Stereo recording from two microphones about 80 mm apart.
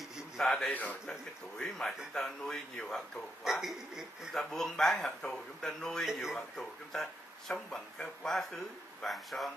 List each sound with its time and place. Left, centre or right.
0.4 s speech: centre
0.7 s a man's voice: centre
1.6 s speech: centre
4.4 s speech: centre